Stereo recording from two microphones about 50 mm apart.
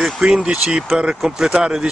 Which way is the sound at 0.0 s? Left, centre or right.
Centre.